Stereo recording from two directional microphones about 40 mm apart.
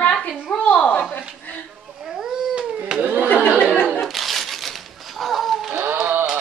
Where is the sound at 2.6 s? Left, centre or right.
Right.